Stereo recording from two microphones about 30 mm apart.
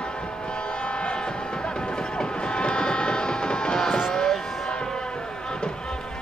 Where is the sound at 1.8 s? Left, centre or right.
Left.